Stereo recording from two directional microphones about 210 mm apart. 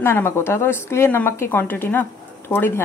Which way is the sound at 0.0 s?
10° left (ahead or behind).